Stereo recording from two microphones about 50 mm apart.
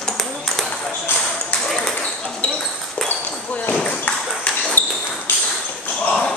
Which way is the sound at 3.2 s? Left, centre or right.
Left.